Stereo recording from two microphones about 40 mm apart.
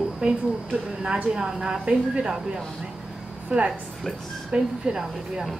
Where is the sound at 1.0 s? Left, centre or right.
Right.